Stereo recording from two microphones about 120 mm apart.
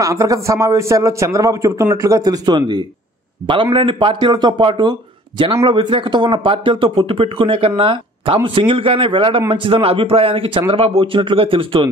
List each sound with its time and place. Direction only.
0.0 s a man's voice: 30° right (ahead or behind); by 11.9 s 45° right (ahead or behind)